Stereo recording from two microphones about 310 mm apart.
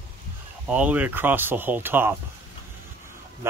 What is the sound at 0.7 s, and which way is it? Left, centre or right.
Speech, centre.